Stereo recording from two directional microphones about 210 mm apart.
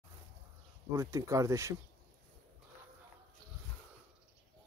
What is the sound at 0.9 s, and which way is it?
Speech, 15° right (ahead or behind).